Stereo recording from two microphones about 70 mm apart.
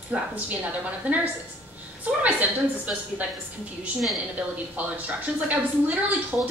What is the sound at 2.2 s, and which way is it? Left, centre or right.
Speech, right.